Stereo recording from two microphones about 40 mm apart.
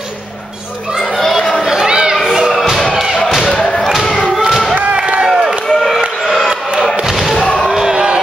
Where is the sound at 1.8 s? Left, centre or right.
Centre.